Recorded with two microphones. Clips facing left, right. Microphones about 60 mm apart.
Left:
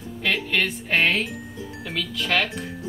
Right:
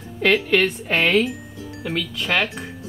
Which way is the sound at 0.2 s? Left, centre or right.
Right.